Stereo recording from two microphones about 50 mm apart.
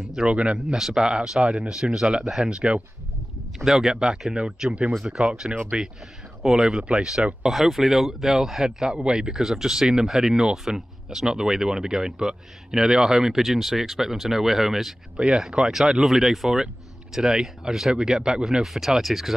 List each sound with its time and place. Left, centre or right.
0.1 s speech: centre
0.7 s speech: centre
2.0 s speech: centre
15.1 s speech: centre
15.7 s speech: centre